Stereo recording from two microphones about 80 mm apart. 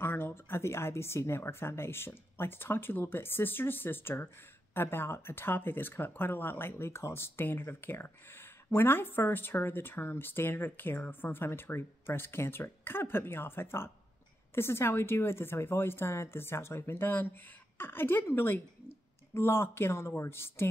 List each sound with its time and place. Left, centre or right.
0.0 s speech: left